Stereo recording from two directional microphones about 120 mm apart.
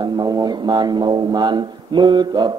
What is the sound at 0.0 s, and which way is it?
Speech, 35° right (ahead or behind).